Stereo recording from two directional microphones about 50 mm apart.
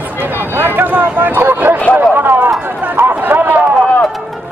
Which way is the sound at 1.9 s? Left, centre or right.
Right.